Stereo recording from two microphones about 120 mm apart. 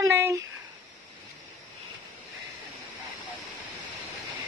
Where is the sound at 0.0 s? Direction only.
25° right (ahead or behind).